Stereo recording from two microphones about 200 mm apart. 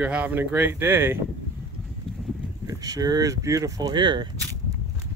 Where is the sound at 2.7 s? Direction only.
20° right (ahead or behind).